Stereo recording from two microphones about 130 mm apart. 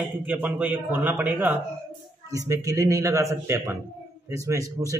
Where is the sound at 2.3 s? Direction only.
25° right (ahead or behind).